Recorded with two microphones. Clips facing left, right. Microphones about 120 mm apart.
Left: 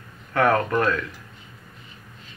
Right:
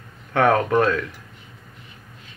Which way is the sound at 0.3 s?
70° right (ahead or behind).